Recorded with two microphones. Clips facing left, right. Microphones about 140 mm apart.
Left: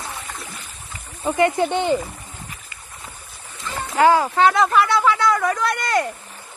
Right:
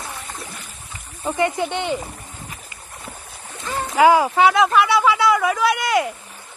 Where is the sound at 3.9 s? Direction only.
10° right (ahead or behind).